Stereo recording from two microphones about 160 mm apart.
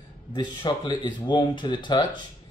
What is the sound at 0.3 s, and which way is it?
Speech, 30° left (ahead or behind).